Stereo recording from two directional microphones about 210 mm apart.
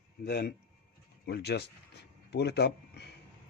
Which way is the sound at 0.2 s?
50° left (ahead or behind).